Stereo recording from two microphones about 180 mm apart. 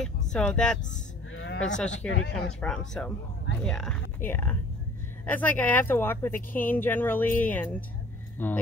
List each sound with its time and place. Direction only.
0.0 s speech: 5° left (ahead or behind)
1.3 s livestock: 90° left
1.9 s speech: 90° left
2.6 s speech: 5° left (ahead or behind)